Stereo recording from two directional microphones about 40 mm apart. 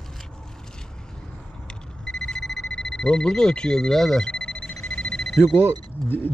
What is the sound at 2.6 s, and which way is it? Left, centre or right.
Speech, left.